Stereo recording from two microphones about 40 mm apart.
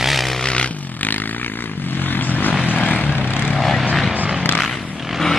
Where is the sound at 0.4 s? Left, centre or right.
Left.